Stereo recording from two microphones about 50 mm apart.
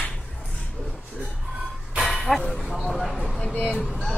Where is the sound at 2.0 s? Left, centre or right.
Centre.